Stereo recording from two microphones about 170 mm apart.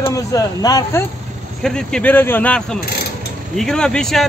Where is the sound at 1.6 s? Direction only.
5° left (ahead or behind).